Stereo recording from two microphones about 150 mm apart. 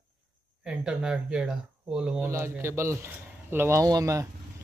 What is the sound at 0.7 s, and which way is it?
Speech, 5° right (ahead or behind).